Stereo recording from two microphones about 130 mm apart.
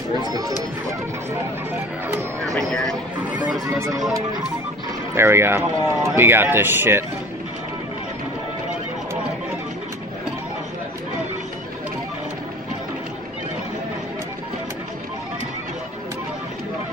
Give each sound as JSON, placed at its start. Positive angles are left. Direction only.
{"t": 0.2, "sound": "speech", "side_deg": -30}
{"t": 2.0, "sound": "speech", "side_deg": -20}
{"t": 2.5, "sound": "speech", "side_deg": 5}
{"t": 3.6, "sound": "speech", "side_deg": -25}
{"t": 5.1, "sound": "speech", "side_deg": -20}